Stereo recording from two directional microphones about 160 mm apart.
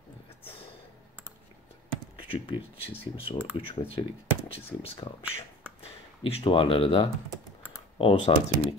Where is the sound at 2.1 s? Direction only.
30° left (ahead or behind).